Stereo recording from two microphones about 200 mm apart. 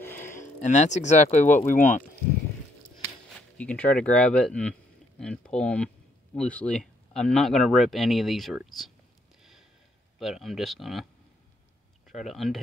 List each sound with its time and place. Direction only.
0.0 s a sound: 10° left (ahead or behind)
0.3 s speech: 40° left (ahead or behind)
3.3 s speech: 5° left (ahead or behind)
9.4 s a sound: centre (ahead or behind)
10.1 s speech: centre (ahead or behind)
12.1 s speech: centre (ahead or behind)